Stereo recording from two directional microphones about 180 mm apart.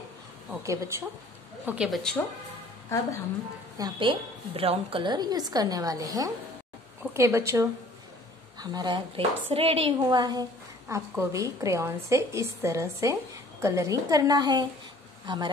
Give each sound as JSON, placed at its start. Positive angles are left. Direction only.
{"t": 0.7, "sound": "a woman's voice", "side_deg": -15}
{"t": 1.7, "sound": "a woman's voice", "side_deg": 0}
{"t": 3.7, "sound": "a woman's voice", "side_deg": -25}
{"t": 10.0, "sound": "a woman's voice", "side_deg": -20}